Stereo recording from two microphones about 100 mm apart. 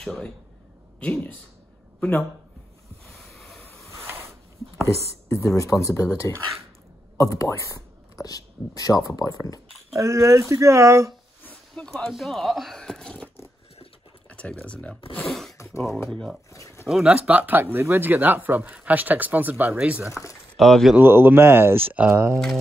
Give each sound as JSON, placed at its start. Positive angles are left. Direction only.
{"t": 0.0, "sound": "speech", "side_deg": 5}
{"t": 3.2, "sound": "a sound", "side_deg": 0}
{"t": 4.8, "sound": "speech", "side_deg": 30}
{"t": 9.9, "sound": "speech", "side_deg": -30}
{"t": 11.4, "sound": "speech", "side_deg": 10}
{"t": 14.3, "sound": "speech", "side_deg": 15}
{"t": 15.1, "sound": "a sound", "side_deg": 5}
{"t": 15.5, "sound": "a sound", "side_deg": 30}
{"t": 16.1, "sound": "speech", "side_deg": 5}
{"t": 16.5, "sound": "a sound", "side_deg": 30}
{"t": 16.8, "sound": "speech", "side_deg": -5}
{"t": 20.1, "sound": "speech", "side_deg": 30}
{"t": 20.5, "sound": "speech", "side_deg": 0}
{"t": 21.0, "sound": "speech", "side_deg": -20}